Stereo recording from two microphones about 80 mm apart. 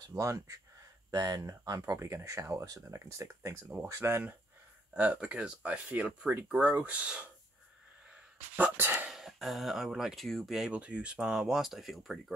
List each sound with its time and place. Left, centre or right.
0.1 s speech: right
1.1 s speech: right
4.9 s speech: centre
8.1 s a sound: centre
9.1 s speech: centre
10.7 s speech: centre